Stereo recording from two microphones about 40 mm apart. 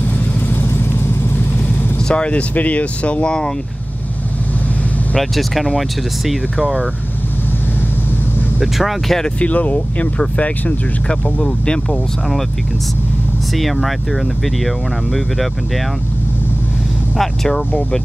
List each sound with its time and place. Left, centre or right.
0.1 s vehicle: left
2.0 s speech: left
2.5 s speech: left
5.1 s speech: centre
8.5 s speech: centre
9.4 s speech: left
11.4 s speech: centre
13.5 s speech: centre
17.2 s speech: centre